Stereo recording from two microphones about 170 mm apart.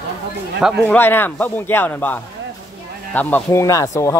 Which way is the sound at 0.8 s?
10° left (ahead or behind).